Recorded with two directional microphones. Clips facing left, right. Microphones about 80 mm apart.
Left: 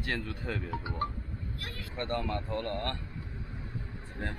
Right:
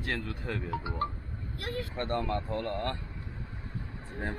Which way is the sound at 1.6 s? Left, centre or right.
Right.